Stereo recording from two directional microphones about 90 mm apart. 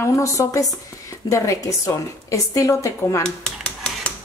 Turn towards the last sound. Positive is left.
turn(degrees=10)  # may be behind; listen again after turning